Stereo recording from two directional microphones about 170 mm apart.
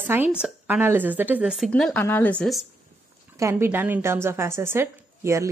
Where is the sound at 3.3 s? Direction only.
15° right (ahead or behind).